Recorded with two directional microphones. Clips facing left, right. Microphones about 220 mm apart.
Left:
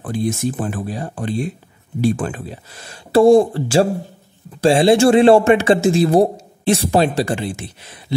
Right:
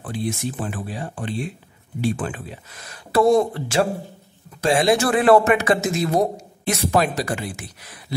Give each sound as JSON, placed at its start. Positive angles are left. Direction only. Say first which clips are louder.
{"t": 0.0, "sound": "a man's voice", "louder": "left 6 dB", "side_deg": 45}